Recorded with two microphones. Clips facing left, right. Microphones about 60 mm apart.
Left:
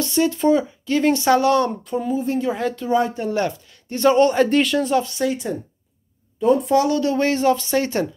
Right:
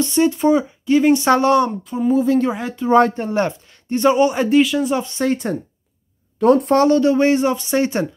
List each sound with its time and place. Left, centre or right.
0.0 s speech: right
1.2 s speech: right
1.9 s speech: centre
2.5 s speech: centre
3.2 s speech: right; by 4.9 s centre
4.9 s speech: right
6.4 s speech: right
6.9 s speech: right